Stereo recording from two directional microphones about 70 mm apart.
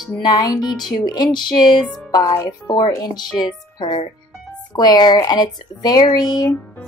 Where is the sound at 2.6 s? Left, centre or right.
Left.